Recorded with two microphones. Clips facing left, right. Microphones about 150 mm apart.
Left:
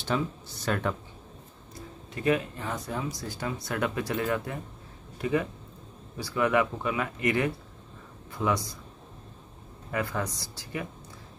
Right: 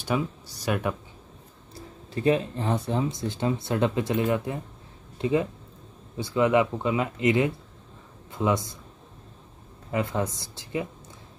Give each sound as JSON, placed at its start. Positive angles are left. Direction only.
{"t": 0.1, "sound": "speech", "side_deg": -10}
{"t": 2.1, "sound": "speech", "side_deg": -30}
{"t": 9.8, "sound": "speech", "side_deg": -20}